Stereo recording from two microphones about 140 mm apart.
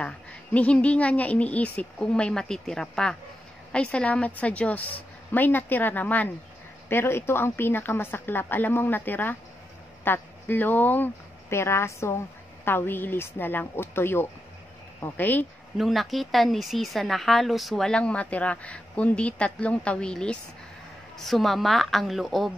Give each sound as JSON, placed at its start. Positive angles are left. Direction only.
{"t": 0.0, "sound": "a woman's voice", "side_deg": 10}
{"t": 15.8, "sound": "speech", "side_deg": 0}